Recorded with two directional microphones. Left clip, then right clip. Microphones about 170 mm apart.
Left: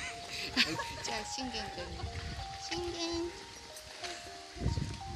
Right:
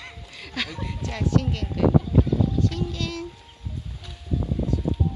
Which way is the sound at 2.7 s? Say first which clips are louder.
Right 5 dB; 45° right (ahead or behind).